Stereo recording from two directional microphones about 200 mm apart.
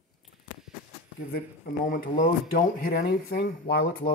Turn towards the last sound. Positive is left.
turn(degrees=50)  # may be behind; listen again after turning